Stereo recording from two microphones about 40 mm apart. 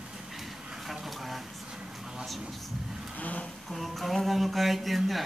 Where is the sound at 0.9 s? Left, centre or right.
Centre.